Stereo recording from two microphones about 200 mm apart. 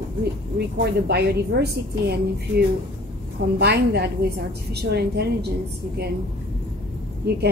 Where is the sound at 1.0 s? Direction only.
55° right (ahead or behind).